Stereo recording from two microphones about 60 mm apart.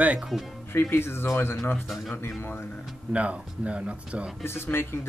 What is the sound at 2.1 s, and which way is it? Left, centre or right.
Speech, left.